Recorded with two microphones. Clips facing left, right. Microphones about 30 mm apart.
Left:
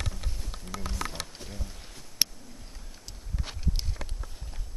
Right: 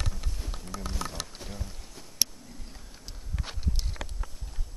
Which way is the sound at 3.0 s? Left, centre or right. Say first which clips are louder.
Even; centre.